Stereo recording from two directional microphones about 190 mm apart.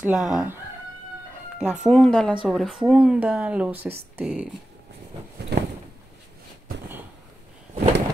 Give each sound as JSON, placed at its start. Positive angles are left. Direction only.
{"t": 0.0, "sound": "speech", "side_deg": 0}
{"t": 1.6, "sound": "speech", "side_deg": -5}
{"t": 5.5, "sound": "a sound", "side_deg": -60}